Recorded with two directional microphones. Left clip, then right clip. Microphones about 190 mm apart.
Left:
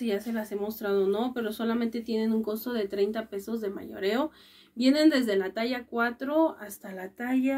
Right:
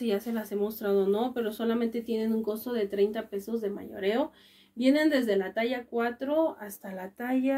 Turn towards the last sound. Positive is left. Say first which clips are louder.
# even
turn(degrees=10)  # may be behind; listen again after turning